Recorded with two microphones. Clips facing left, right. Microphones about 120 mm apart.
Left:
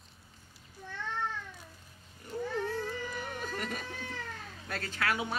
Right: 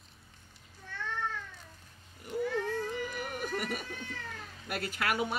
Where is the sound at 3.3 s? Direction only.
10° right (ahead or behind).